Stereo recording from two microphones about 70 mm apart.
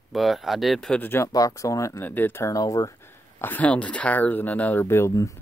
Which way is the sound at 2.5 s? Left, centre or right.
Left.